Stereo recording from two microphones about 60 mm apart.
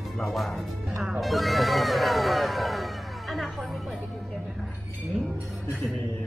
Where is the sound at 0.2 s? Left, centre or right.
Centre.